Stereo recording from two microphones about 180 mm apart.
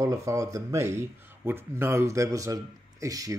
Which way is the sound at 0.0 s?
15° right (ahead or behind).